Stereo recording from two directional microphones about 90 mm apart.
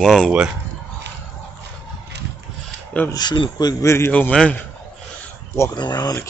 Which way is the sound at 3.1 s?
55° left (ahead or behind).